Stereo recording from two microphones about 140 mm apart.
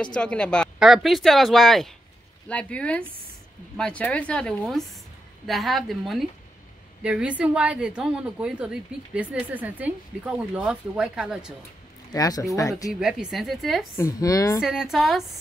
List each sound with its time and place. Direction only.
0.0 s a woman's voice: 5° left (ahead or behind)
12.1 s speech: 25° left (ahead or behind)
13.0 s speech: 5° right (ahead or behind)
13.9 s speech: 25° left (ahead or behind)
14.6 s speech: 5° right (ahead or behind)